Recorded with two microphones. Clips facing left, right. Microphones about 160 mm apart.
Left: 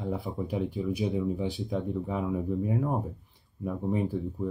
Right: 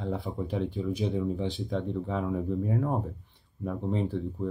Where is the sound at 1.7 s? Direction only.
10° left (ahead or behind).